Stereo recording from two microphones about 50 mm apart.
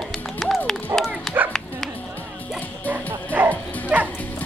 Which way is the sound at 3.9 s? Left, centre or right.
Right.